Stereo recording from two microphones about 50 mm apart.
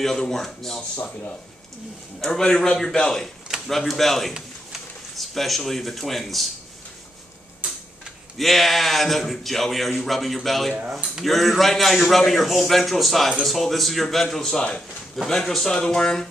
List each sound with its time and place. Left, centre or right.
0.0 s a man's voice: centre
2.1 s a man's voice: centre
8.4 s a man's voice: centre
10.9 s speech: centre
11.2 s a man's voice: centre